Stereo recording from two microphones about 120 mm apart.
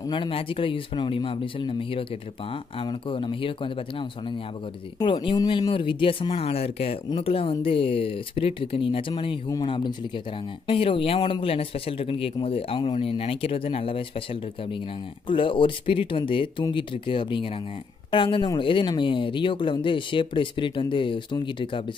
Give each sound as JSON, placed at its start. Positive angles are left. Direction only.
{"t": 0.1, "sound": "a man's voice", "side_deg": 45}
{"t": 5.7, "sound": "a man's voice", "side_deg": 45}